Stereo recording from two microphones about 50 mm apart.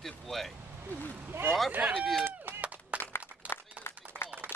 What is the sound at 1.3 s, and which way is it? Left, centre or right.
Speech, right.